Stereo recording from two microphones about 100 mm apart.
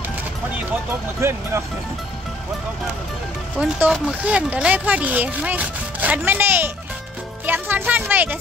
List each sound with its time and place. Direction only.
1.2 s speech: 25° right (ahead or behind)
3.5 s speech: 10° right (ahead or behind)